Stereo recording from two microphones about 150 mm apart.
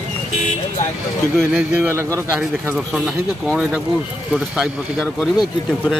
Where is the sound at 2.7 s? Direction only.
Centre (ahead or behind).